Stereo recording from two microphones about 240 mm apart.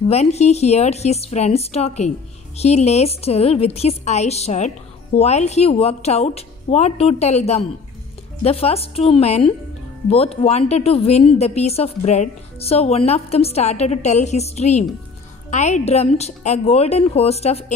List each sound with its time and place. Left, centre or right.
0.1 s a woman's voice: left